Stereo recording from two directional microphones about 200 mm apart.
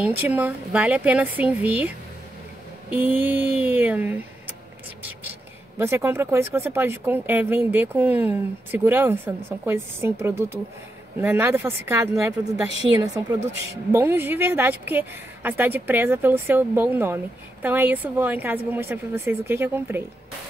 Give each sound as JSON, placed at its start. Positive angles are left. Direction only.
{"t": 0.0, "sound": "a woman's voice", "side_deg": -10}
{"t": 5.8, "sound": "a woman's voice", "side_deg": -15}